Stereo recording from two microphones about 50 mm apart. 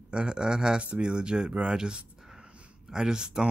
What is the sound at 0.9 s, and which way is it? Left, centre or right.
Speech, centre.